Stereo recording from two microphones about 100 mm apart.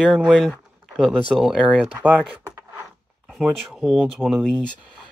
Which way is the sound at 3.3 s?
5° right (ahead or behind).